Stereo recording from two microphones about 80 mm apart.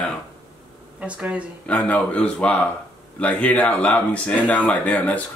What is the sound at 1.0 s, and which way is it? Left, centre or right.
Speech, centre.